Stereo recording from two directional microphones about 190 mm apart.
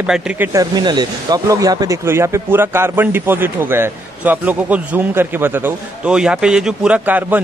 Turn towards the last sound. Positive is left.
turn(degrees=-10)  # may be behind; listen again after turning